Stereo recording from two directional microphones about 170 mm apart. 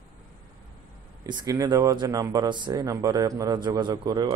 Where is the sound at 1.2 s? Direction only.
25° right (ahead or behind).